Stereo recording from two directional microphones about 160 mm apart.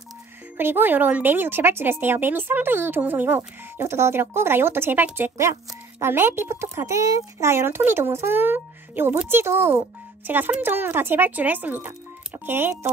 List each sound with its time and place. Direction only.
0.6 s speech: 10° right (ahead or behind)